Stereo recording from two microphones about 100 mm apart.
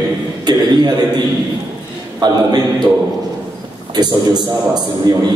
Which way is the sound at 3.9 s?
45° right (ahead or behind).